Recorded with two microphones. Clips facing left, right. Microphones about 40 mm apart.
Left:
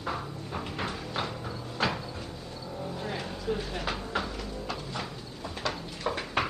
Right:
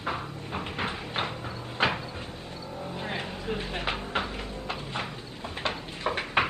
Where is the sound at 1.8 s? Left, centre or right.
Right.